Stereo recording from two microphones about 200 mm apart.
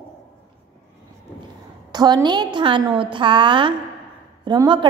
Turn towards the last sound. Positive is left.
turn(degrees=-20)  # may be behind; listen again after turning